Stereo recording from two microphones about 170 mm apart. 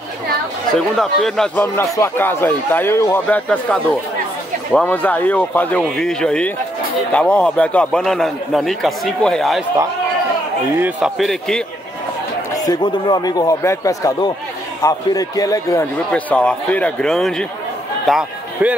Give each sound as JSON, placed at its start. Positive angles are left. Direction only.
{"t": 0.7, "sound": "a man's voice", "side_deg": 5}
{"t": 10.8, "sound": "a man's voice", "side_deg": -5}
{"t": 12.6, "sound": "speech", "side_deg": 25}
{"t": 16.1, "sound": "speech", "side_deg": 5}